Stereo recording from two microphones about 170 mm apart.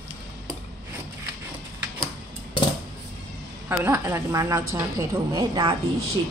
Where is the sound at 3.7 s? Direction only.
15° right (ahead or behind).